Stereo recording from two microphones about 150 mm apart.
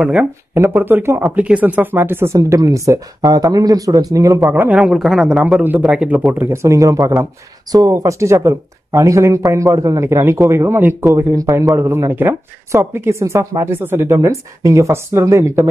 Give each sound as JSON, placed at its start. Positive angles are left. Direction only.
{"t": 0.0, "sound": "speech", "side_deg": -10}
{"t": 4.4, "sound": "speech", "side_deg": -10}
{"t": 6.4, "sound": "speech", "side_deg": -20}